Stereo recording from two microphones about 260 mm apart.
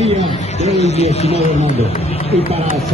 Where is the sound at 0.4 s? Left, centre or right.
Left.